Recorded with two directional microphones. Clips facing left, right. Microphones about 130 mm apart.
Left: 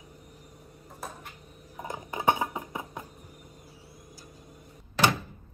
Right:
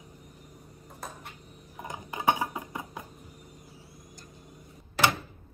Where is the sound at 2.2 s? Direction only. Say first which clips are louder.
Left 1 dB; 20° left (ahead or behind).